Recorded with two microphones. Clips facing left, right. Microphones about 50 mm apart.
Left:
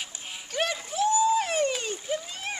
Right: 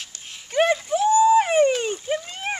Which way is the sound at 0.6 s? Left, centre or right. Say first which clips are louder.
Right 8 dB; right.